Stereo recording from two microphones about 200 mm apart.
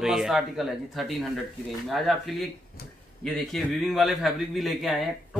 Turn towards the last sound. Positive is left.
turn(degrees=0)  # may be behind; listen again after turning